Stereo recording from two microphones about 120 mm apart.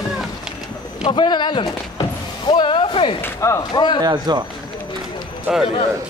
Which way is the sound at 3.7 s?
40° left (ahead or behind).